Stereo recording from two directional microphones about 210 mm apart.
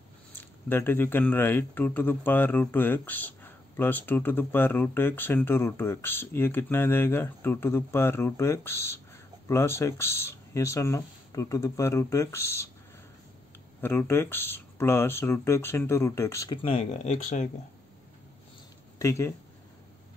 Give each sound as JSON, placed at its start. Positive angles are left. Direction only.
{"t": 0.4, "sound": "speech", "side_deg": 10}
{"t": 13.7, "sound": "speech", "side_deg": 10}
{"t": 16.6, "sound": "speech", "side_deg": 30}
{"t": 18.9, "sound": "speech", "side_deg": 15}